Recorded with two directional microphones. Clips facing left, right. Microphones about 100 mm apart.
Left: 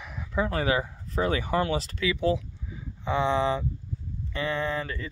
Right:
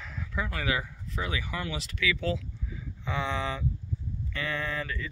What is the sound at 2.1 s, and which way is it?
Speech, 25° left (ahead or behind).